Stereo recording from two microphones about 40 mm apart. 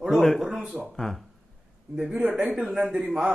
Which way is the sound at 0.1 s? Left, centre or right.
Centre.